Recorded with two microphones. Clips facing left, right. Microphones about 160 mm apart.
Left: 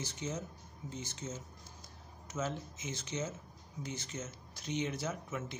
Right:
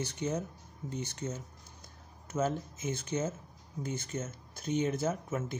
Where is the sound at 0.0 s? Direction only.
60° right (ahead or behind).